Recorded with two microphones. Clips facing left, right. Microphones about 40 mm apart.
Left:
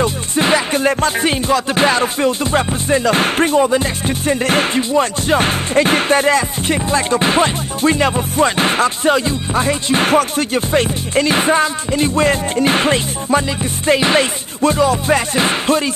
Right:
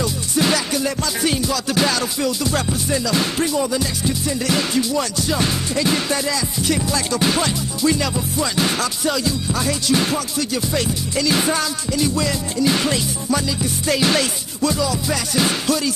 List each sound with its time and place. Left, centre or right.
0.0 s music: left